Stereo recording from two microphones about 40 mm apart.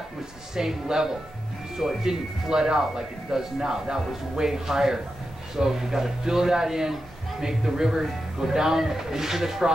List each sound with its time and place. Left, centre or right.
0.6 s speech: centre